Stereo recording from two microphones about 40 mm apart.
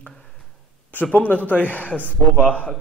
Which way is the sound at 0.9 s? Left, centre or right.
Left.